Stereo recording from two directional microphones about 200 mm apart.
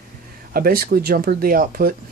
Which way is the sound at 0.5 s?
45° right (ahead or behind).